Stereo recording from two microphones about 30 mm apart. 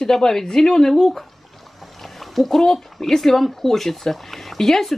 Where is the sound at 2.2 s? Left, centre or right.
Centre.